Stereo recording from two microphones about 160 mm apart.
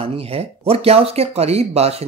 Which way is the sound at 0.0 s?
35° right (ahead or behind).